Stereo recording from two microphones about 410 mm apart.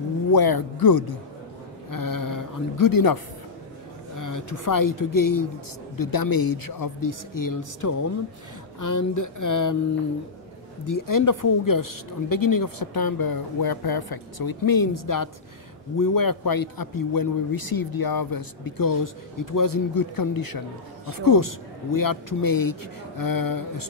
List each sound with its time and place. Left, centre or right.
0.3 s a man's voice: left
4.2 s speech: left
10.9 s a man's voice: left